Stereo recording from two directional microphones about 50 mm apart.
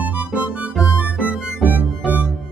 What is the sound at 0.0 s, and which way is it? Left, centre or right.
Music, right.